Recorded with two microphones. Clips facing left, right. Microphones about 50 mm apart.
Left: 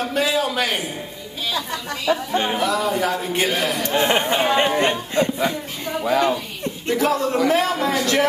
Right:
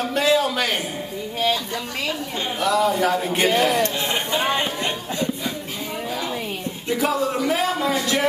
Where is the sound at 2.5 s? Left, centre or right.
Centre.